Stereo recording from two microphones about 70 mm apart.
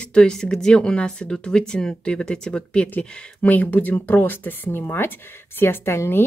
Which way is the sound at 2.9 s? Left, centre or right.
Left.